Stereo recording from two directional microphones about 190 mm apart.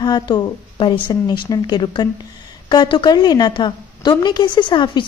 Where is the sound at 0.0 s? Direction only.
20° left (ahead or behind).